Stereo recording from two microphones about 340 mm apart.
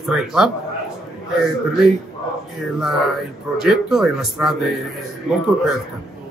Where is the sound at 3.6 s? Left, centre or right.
Centre.